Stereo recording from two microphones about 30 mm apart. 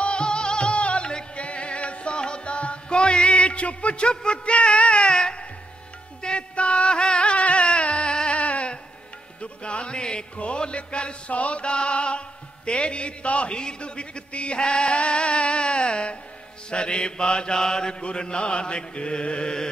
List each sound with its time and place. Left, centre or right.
0.0 s music: left
5.1 s music: left
6.2 s music: left
8.3 s a sound: left
9.4 s music: left
13.6 s music: left
16.7 s mantra: left
18.0 s music: left